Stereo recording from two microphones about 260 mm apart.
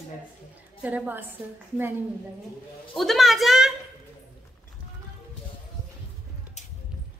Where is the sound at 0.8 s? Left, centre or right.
Centre.